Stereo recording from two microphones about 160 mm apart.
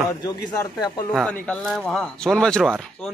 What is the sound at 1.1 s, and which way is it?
Speech, 5° left (ahead or behind).